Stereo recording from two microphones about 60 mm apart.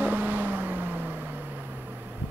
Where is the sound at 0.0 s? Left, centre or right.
Right.